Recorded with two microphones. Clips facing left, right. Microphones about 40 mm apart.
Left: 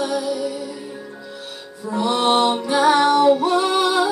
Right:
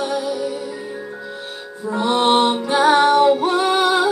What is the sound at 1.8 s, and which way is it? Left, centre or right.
Music, right.